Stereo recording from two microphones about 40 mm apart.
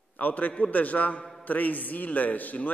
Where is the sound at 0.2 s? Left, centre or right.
Left.